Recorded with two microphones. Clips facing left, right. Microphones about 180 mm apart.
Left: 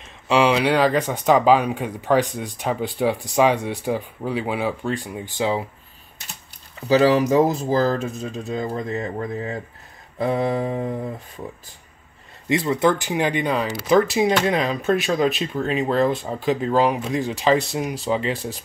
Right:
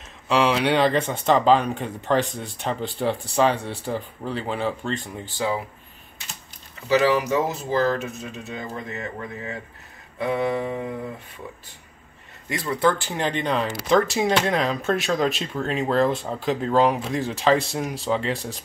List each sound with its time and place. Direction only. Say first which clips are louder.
0.3 s speech: left 2 dB; centre (ahead or behind); by 5.7 s 25° left (ahead or behind)
6.9 s speech: left 4 dB; 35° left (ahead or behind)
12.4 s speech: left 3 dB; 20° left (ahead or behind); by 18.6 s centre (ahead or behind)